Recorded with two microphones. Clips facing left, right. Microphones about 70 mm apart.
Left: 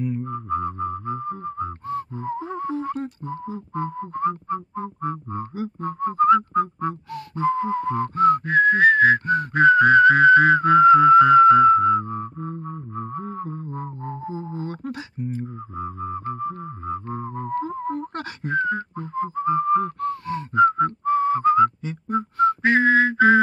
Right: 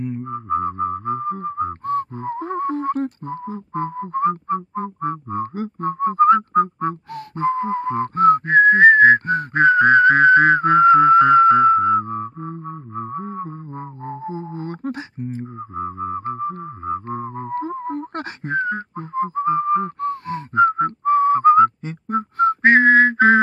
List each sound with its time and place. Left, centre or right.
0.3 s music: right
4.7 s whistling: right
12.4 s music: right